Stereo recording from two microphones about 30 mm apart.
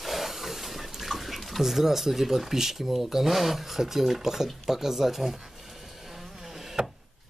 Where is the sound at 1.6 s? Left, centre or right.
Centre.